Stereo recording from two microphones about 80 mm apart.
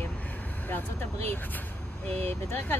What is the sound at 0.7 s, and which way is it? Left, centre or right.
Speech, left.